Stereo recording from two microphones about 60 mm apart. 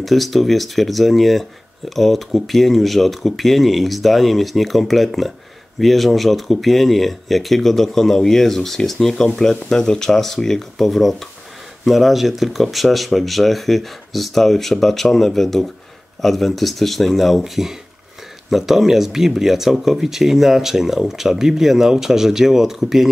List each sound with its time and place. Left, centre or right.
0.0 s speech: centre